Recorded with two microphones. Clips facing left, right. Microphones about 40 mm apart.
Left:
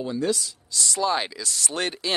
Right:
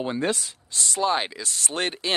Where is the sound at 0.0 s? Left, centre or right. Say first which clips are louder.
Even; right.